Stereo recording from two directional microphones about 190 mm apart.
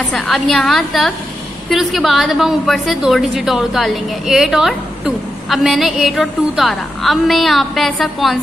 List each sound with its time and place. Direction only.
0.1 s a woman's voice: centre (ahead or behind)